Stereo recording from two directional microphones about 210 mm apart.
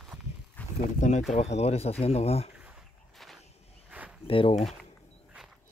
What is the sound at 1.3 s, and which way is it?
Speech, 30° left (ahead or behind).